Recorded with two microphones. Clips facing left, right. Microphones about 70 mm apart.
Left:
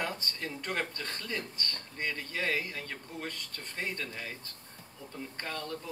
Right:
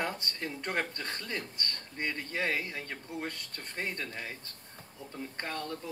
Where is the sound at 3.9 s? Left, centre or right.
Right.